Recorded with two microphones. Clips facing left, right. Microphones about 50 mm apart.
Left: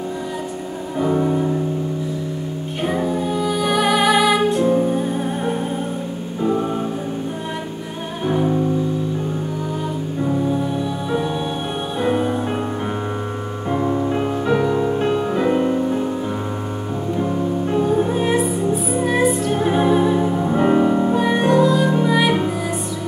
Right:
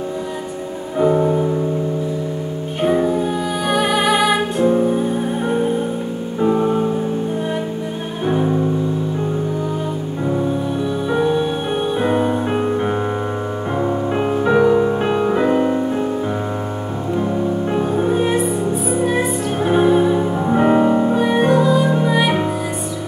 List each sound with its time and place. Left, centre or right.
0.9 s music: centre
2.8 s music: centre
12.0 s music: centre
14.1 s music: centre
17.6 s music: centre
17.9 s music: centre